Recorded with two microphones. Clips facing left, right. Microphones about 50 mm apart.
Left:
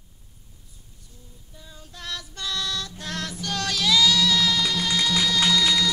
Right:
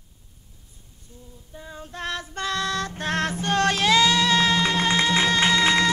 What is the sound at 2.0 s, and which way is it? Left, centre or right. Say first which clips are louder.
Music: right 6 dB; right.